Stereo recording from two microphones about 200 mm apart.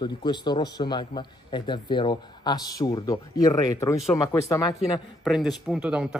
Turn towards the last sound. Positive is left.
turn(degrees=-5)  # may be behind; listen again after turning